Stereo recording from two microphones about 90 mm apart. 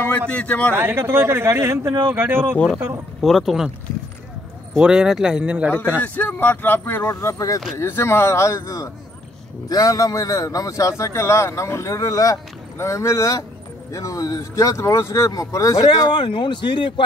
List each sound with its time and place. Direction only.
0.3 s a man's voice: 15° left (ahead or behind)
0.7 s speech: 25° right (ahead or behind)
2.5 s a man's voice: 15° left (ahead or behind)
3.2 s speech: centre (ahead or behind)
4.7 s speech: 10° right (ahead or behind)
5.9 s speech: 20° left (ahead or behind); by 7.6 s 35° left (ahead or behind)
7.7 s a man's voice: 25° left (ahead or behind)
15.9 s speech: 55° left (ahead or behind)